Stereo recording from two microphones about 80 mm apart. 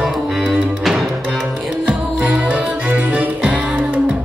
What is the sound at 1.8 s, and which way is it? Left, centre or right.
Music, centre.